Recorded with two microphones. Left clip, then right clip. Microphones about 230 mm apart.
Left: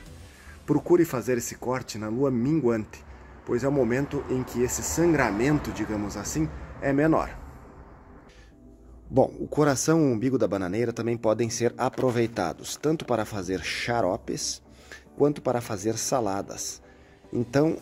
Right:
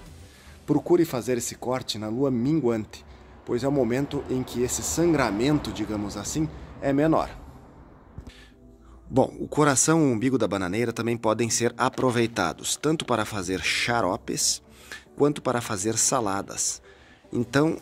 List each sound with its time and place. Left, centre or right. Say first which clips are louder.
0.7 s speech: even; centre
9.1 s speech: even; centre